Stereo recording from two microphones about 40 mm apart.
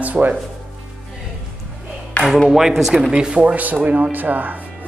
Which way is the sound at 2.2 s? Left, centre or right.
Left.